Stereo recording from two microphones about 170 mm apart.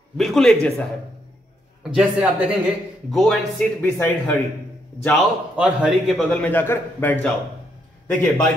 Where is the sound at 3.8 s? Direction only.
10° left (ahead or behind).